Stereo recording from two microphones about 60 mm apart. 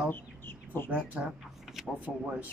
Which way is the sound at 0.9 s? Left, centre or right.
Right.